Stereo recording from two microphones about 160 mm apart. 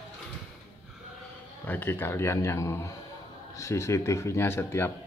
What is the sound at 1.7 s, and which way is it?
A man's voice, 15° left (ahead or behind).